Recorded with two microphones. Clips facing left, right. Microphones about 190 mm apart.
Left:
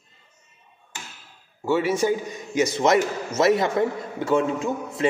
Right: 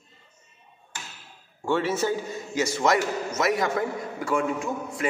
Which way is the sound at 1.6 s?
10° left (ahead or behind).